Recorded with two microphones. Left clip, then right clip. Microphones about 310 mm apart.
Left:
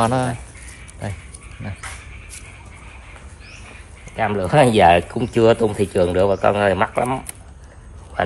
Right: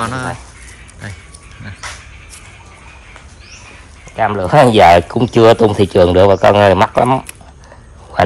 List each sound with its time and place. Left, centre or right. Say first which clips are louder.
0.0 s speech: left 1 dB; centre
4.2 s speech: right 6 dB; centre